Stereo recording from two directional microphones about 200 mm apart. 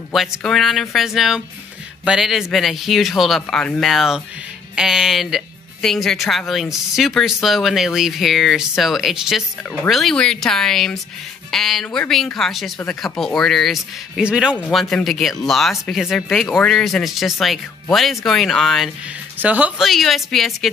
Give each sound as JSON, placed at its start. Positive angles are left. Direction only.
{"t": 0.1, "sound": "speech", "side_deg": 0}